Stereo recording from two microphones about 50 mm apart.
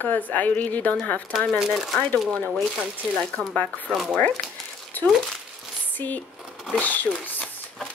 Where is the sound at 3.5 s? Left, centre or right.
Left.